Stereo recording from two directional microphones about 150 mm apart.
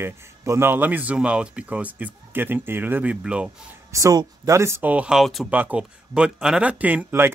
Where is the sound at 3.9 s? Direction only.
20° right (ahead or behind).